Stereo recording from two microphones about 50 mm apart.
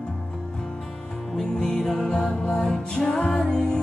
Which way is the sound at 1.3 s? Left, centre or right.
Centre.